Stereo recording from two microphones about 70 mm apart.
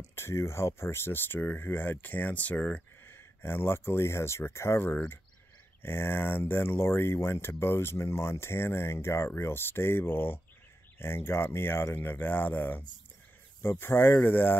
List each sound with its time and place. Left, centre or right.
0.1 s speech: left
3.1 s speech: left